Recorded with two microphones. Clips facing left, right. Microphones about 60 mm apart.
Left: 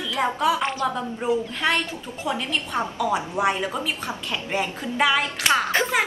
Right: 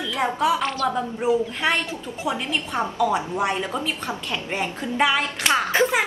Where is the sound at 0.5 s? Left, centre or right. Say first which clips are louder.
Even; centre.